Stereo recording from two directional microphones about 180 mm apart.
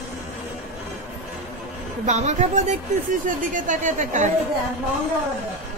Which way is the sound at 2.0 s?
40° right (ahead or behind).